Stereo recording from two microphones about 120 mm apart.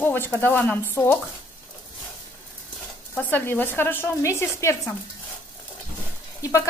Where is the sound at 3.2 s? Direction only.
15° left (ahead or behind).